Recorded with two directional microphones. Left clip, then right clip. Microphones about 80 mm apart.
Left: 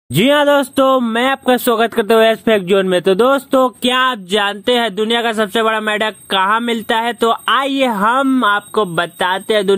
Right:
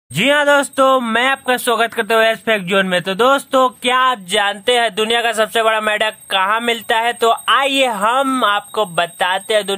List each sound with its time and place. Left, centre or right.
0.1 s speech: left
3.8 s a sound: left
4.3 s speech: left
4.6 s speech: left
6.3 s speech: left
6.6 s speech: left
7.5 s speech: left
8.4 s speech: left